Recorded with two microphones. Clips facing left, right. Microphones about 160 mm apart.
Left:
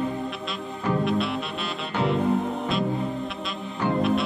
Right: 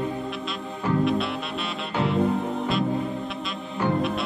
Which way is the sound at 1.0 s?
Centre (ahead or behind).